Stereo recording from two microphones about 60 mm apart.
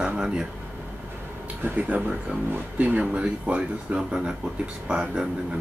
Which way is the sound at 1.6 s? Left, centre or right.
Right.